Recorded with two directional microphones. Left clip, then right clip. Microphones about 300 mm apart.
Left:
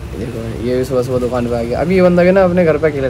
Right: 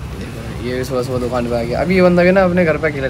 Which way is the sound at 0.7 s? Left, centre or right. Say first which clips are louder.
Left 4 dB; centre.